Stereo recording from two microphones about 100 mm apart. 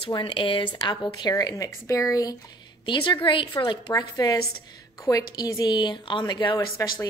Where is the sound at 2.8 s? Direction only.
55° left (ahead or behind).